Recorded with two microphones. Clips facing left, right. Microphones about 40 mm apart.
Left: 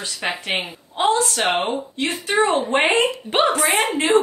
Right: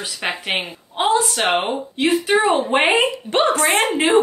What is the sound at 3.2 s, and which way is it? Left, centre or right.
Speech, centre.